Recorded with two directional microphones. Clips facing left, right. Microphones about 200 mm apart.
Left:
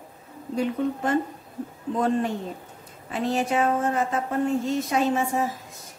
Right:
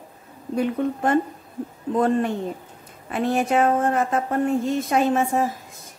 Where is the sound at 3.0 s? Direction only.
55° right (ahead or behind).